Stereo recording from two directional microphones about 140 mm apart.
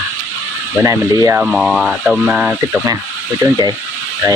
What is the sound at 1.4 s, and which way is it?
Speech, 5° right (ahead or behind).